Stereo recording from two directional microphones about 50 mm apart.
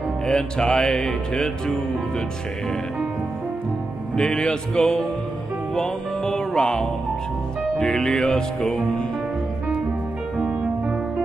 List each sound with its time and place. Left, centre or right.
0.3 s music: centre
4.2 s music: centre
10.4 s music: right